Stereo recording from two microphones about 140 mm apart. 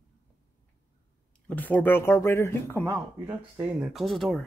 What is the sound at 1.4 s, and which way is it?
Speech, 10° left (ahead or behind).